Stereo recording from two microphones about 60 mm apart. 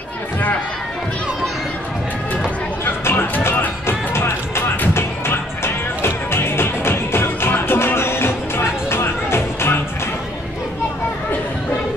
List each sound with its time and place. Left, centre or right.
2.8 s music: left